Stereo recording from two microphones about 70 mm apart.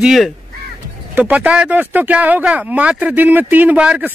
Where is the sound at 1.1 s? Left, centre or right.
Right.